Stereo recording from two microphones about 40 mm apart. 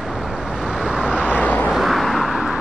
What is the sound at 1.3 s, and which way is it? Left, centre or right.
Vehicle, left.